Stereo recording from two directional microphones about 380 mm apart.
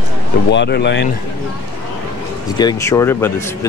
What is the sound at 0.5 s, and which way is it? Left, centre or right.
Speech, left.